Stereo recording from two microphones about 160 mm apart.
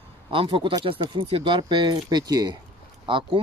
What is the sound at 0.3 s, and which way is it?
Speech, 35° right (ahead or behind).